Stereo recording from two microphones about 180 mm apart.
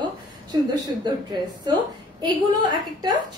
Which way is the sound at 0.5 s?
25° right (ahead or behind).